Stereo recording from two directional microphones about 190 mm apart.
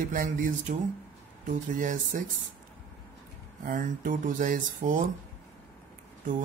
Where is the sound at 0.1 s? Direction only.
45° right (ahead or behind).